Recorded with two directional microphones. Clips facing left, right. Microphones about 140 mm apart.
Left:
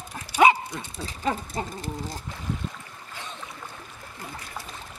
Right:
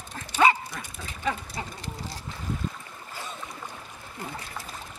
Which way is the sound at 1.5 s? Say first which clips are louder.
Left 5 dB; 50° left (ahead or behind).